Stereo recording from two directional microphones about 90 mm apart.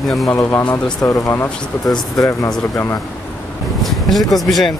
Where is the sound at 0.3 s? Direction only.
25° left (ahead or behind).